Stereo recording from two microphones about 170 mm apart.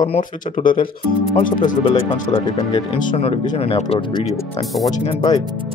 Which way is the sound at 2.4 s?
25° left (ahead or behind).